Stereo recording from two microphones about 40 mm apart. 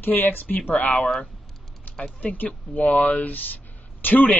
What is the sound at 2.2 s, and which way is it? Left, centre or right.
A man's voice, left.